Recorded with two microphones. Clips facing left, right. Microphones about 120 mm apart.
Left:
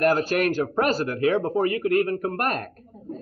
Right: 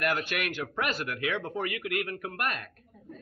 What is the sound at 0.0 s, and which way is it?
Speech, 35° left (ahead or behind).